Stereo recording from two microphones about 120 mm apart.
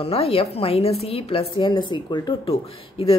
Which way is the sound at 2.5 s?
50° left (ahead or behind).